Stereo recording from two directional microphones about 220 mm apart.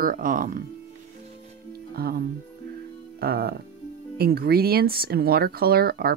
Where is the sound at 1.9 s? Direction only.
45° right (ahead or behind).